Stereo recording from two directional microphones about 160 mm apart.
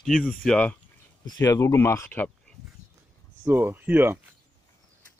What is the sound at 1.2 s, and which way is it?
Speech, 20° left (ahead or behind).